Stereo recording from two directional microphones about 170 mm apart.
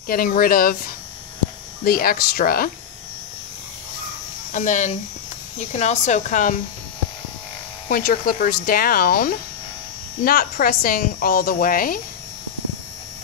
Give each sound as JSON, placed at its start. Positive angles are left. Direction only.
{"t": 0.1, "sound": "speech", "side_deg": 55}
{"t": 4.5, "sound": "speech", "side_deg": 50}
{"t": 7.9, "sound": "speech", "side_deg": 60}